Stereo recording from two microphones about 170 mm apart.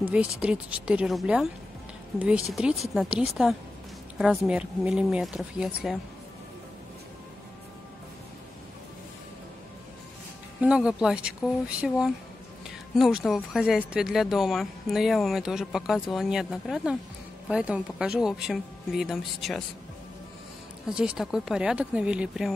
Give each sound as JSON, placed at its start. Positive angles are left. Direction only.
{"t": 0.0, "sound": "speech", "side_deg": -10}
{"t": 10.6, "sound": "speech", "side_deg": -5}
{"t": 12.6, "sound": "speech", "side_deg": -5}
{"t": 20.8, "sound": "speech", "side_deg": -5}